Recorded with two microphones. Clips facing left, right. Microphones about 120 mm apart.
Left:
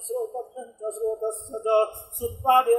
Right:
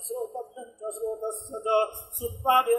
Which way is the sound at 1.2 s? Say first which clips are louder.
Left 4 dB; 40° left (ahead or behind).